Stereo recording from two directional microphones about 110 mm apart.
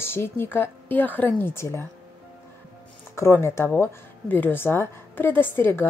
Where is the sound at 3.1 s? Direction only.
25° left (ahead or behind).